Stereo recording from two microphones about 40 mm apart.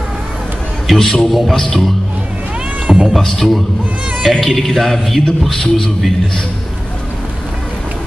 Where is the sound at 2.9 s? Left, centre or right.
Right.